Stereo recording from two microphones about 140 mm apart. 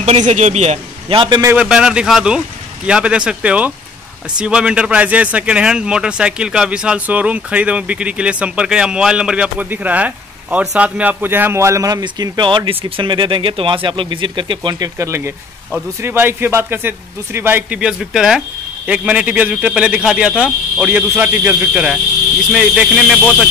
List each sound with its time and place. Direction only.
0.0 s a man's voice: 50° right (ahead or behind)
1.6 s a man's voice: 5° right (ahead or behind)